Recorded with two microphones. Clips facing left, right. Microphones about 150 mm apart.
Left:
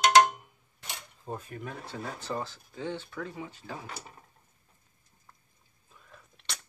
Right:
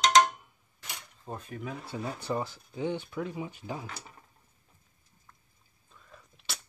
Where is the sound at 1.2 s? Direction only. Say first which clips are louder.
Even; centre (ahead or behind); by 3.7 s 15° right (ahead or behind).